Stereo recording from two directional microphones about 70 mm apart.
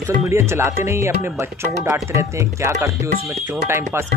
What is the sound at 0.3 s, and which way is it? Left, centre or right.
Speech, right.